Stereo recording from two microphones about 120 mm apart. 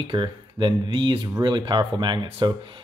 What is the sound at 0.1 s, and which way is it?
Speech, 40° right (ahead or behind).